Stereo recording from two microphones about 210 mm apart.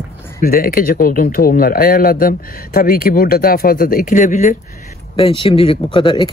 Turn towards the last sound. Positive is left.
turn(degrees=25)  # may be behind; listen again after turning